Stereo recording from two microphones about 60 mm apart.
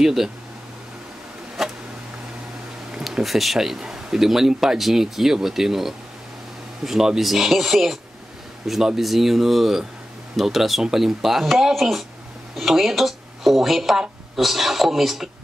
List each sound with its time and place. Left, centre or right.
0.0 s a man's voice: centre
1.6 s a sound: centre
3.0 s a man's voice: centre